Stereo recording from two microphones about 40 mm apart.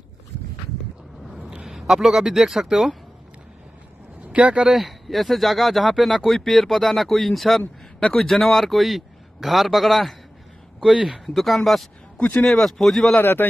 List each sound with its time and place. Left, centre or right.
1.2 s a sound: centre
2.0 s speech: centre
4.2 s speech: right
4.6 s speech: centre
10.8 s speech: centre
11.2 s speech: centre
13.2 s a man's voice: left